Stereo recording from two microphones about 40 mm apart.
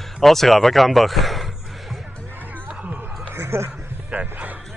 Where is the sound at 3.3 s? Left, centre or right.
Right.